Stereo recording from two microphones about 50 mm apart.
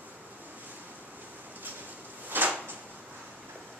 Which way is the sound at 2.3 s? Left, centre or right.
Right.